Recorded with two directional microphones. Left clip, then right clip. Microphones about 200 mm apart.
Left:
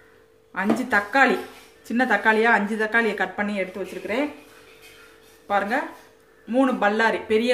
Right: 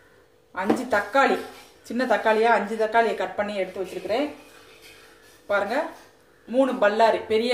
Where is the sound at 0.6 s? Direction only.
50° left (ahead or behind).